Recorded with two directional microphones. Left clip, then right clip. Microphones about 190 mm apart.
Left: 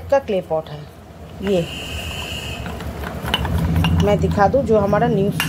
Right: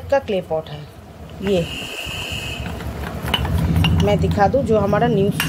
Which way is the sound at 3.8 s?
5° left (ahead or behind).